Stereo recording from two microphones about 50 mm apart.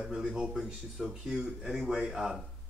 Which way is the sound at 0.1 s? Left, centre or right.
Centre.